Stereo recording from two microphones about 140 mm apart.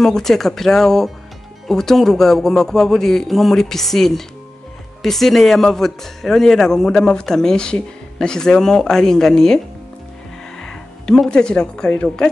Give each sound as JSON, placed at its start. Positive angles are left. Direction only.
{"t": 0.0, "sound": "speech", "side_deg": 5}
{"t": 10.6, "sound": "speech", "side_deg": 5}